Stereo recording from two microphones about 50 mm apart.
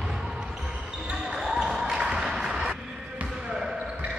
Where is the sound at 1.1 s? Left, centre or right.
Centre.